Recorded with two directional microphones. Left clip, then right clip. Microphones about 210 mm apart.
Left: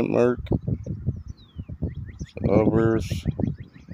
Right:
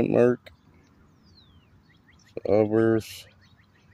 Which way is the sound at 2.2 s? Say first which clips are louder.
Even; 45° right (ahead or behind).